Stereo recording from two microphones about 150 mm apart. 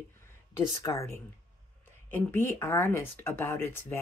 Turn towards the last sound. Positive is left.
turn(degrees=15)  # may be behind; listen again after turning